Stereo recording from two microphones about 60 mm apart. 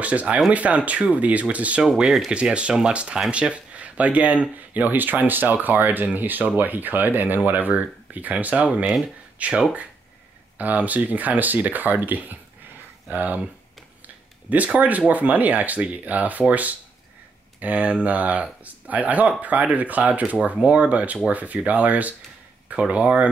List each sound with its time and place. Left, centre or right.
0.0 s speech: right
1.8 s speech: centre
2.3 s speech: centre